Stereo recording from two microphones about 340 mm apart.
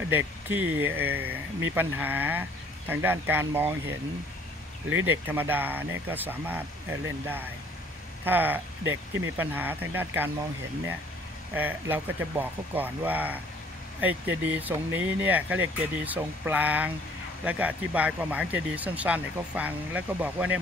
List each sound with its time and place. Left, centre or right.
0.1 s speech: centre
4.8 s speech: right
5.2 s speech: centre
8.3 s speech: centre
11.5 s speech: centre